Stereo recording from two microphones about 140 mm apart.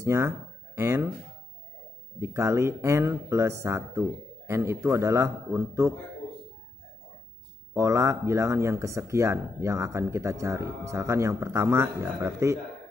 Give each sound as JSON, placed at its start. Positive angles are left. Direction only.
{"t": 0.0, "sound": "speech", "side_deg": -20}
{"t": 2.1, "sound": "speech", "side_deg": -20}
{"t": 7.7, "sound": "speech", "side_deg": -20}